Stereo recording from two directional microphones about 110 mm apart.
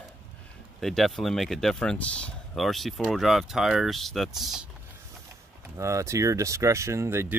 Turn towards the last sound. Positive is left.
turn(degrees=-20)  # may be behind; listen again after turning